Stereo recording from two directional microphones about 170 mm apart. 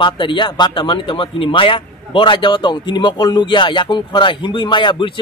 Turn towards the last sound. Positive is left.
turn(degrees=30)  # may be behind; listen again after turning